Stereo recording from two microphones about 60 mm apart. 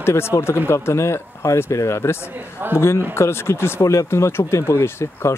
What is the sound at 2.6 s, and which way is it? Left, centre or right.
Speech, right.